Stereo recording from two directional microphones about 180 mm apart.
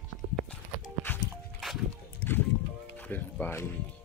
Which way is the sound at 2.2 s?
60° left (ahead or behind).